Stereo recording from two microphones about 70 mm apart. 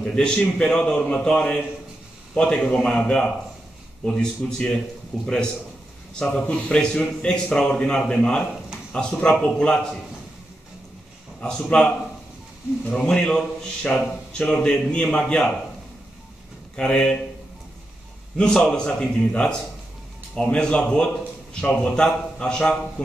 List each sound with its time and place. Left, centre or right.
0.0 s speech: centre
11.4 s speech: centre
12.9 s speech: centre
16.7 s speech: centre
18.4 s speech: centre
23.0 s a sound: centre